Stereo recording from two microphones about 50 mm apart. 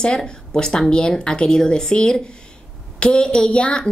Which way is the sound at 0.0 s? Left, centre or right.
Centre.